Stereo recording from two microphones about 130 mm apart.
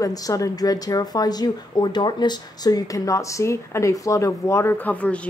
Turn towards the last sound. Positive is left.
turn(degrees=10)  # may be behind; listen again after turning